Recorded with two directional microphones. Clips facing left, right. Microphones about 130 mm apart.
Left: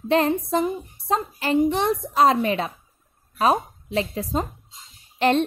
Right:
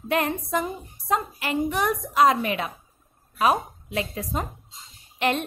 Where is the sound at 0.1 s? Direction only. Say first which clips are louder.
Left 4 dB; 30° left (ahead or behind).